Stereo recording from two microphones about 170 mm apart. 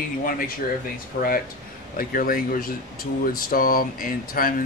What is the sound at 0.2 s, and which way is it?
Speech, 55° left (ahead or behind).